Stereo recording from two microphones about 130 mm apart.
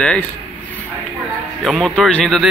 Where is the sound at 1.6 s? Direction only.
Centre (ahead or behind).